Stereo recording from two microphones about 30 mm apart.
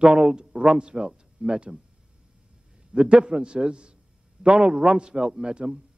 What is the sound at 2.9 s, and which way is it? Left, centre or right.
A man's voice, right.